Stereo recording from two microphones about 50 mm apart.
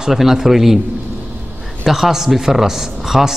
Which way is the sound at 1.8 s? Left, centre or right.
Centre.